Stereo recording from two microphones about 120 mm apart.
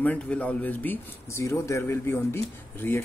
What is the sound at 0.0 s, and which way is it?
Speech, 10° left (ahead or behind).